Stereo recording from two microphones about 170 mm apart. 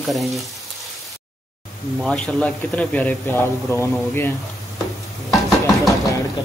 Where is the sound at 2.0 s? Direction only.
5° left (ahead or behind).